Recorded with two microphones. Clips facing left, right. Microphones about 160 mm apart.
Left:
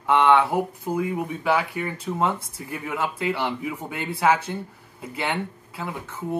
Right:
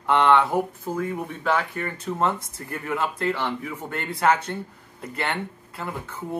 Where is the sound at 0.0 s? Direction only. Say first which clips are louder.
Left 1 dB; 5° left (ahead or behind).